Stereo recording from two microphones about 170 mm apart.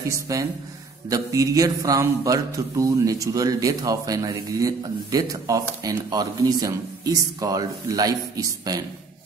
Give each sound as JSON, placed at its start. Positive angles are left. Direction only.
{"t": 0.1, "sound": "speech", "side_deg": -20}